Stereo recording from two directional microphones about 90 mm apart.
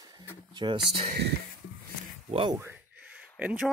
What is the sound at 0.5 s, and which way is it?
Speech, 55° right (ahead or behind).